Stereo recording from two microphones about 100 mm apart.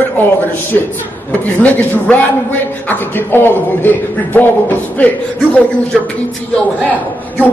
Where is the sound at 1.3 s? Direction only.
15° left (ahead or behind).